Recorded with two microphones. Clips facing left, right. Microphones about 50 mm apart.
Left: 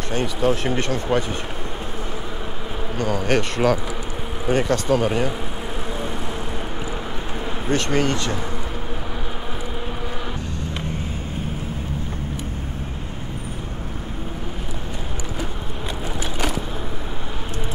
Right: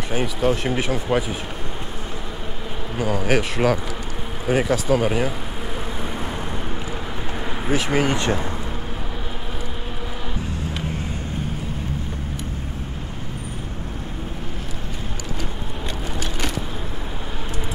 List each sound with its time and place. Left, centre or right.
0.1 s speech: centre
3.0 s speech: centre
7.6 s speech: centre